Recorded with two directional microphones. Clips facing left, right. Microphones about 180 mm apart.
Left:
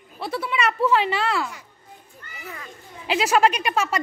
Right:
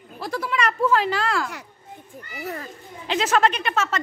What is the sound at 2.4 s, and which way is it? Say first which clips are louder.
Speech: right 7 dB; 40° right (ahead or behind).